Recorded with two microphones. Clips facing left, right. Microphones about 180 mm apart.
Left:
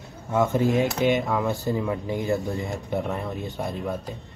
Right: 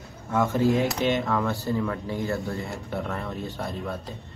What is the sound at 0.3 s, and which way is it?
Speech, 20° left (ahead or behind).